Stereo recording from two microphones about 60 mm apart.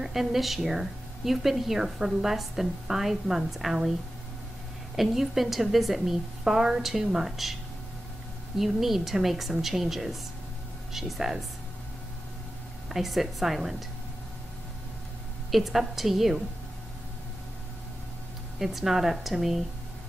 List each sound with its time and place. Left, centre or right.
0.0 s a woman's voice: centre
4.9 s a woman's voice: centre
8.5 s a woman's voice: centre
12.9 s a woman's voice: centre
15.5 s a woman's voice: centre
18.6 s a woman's voice: centre